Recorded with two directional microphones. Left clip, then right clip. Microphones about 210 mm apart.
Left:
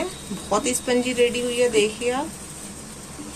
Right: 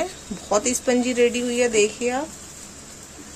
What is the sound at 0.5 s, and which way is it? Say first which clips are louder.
A woman's voice: right 1 dB; 30° right (ahead or behind).